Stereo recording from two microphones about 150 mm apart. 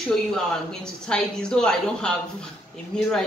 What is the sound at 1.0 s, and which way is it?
A woman's voice, 5° left (ahead or behind).